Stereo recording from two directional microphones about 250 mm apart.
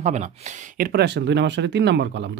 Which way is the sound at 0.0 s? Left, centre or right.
Right.